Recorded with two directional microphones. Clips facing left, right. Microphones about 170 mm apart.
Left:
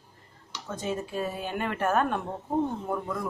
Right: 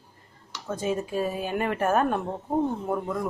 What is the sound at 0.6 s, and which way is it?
A woman's voice, 10° right (ahead or behind).